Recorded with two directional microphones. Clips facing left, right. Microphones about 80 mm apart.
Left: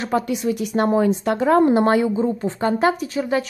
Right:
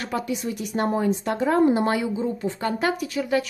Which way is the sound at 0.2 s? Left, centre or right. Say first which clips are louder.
Left 6 dB; left.